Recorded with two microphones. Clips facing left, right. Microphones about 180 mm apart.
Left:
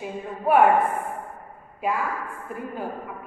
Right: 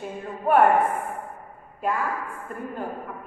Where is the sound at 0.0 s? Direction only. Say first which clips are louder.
Left 1 dB; centre (ahead or behind).